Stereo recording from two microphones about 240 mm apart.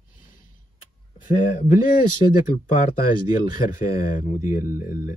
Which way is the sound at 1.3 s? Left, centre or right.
Left.